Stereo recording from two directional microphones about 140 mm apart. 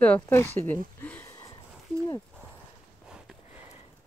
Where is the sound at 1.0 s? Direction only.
10° left (ahead or behind).